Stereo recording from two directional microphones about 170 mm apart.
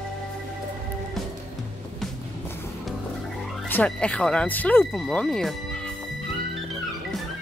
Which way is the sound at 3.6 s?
10° left (ahead or behind).